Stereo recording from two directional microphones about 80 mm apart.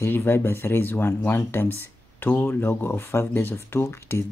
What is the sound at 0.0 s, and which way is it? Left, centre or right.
Speech, left.